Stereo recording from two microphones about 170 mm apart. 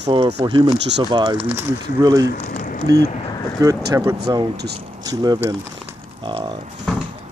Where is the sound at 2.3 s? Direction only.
50° left (ahead or behind).